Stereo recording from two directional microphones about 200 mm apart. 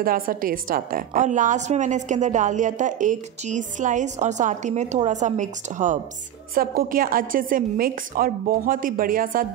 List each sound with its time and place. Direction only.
0.0 s a woman's voice: 45° right (ahead or behind)